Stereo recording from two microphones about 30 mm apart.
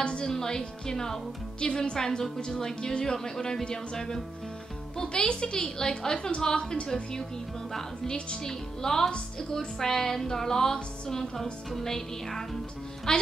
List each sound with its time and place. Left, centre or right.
0.0 s music: left
0.3 s a woman's voice: centre
1.6 s a woman's voice: left
2.0 s a woman's voice: centre
8.5 s a woman's voice: centre
9.8 s music: centre
13.1 s a woman's voice: left